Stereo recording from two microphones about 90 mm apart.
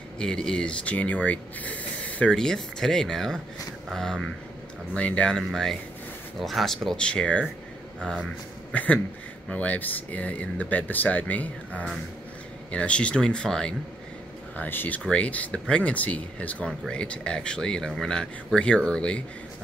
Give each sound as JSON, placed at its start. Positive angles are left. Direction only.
{"t": 0.2, "sound": "speech", "side_deg": 10}
{"t": 14.6, "sound": "speech", "side_deg": 20}